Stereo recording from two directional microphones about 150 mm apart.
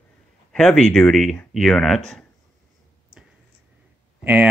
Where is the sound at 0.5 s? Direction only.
5° left (ahead or behind).